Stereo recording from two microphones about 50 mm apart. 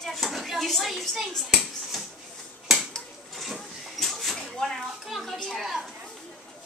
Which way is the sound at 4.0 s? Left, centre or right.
Centre.